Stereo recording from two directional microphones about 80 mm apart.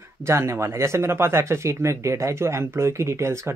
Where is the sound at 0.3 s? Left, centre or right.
Right.